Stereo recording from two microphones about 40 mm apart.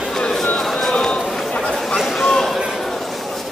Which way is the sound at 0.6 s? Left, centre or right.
Centre.